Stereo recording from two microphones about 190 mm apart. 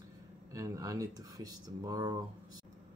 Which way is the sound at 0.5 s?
15° right (ahead or behind).